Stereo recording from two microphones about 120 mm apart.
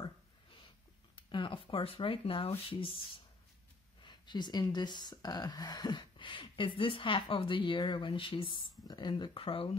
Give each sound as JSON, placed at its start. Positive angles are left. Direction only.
{"t": 1.3, "sound": "speech", "side_deg": 45}
{"t": 4.0, "sound": "speech", "side_deg": 40}